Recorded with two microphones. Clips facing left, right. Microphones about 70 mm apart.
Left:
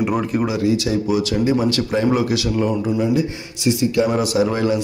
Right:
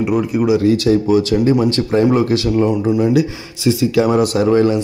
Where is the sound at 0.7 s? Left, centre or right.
Right.